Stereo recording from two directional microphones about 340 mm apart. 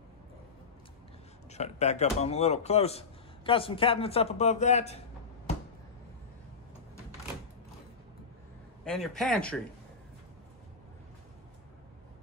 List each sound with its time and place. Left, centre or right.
1.5 s a man's voice: centre
8.8 s speech: centre